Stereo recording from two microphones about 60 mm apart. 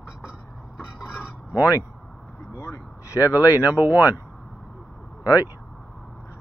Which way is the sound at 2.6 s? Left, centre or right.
Left.